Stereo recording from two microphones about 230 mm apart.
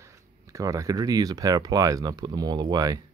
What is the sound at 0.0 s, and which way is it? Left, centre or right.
Speech, centre.